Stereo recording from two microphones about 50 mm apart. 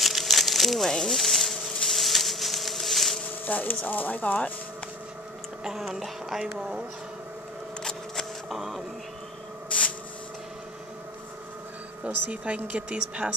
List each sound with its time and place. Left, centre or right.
0.0 s crumpling: centre
1.9 s a sound: centre
3.4 s speech: left
5.6 s speech: centre
8.5 s a sound: centre
9.7 s rub: left
12.3 s speech: right
13.2 s speech: centre